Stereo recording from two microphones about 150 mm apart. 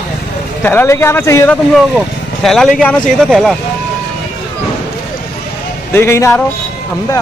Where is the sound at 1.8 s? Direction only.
Centre (ahead or behind).